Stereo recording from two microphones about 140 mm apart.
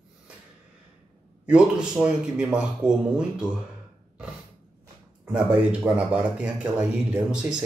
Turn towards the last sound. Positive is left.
turn(degrees=-5)  # may be behind; listen again after turning